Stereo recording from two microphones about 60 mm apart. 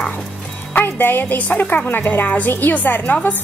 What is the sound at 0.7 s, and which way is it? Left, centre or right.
A woman's voice, left.